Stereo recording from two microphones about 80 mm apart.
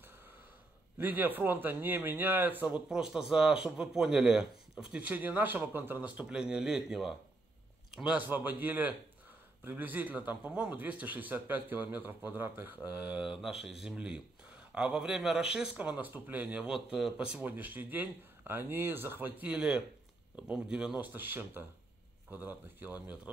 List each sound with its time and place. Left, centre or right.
0.9 s a man's voice: right
2.9 s speech: centre
5.1 s a man's voice: right
16.7 s speech: centre
17.2 s a man's voice: centre
21.1 s a man's voice: right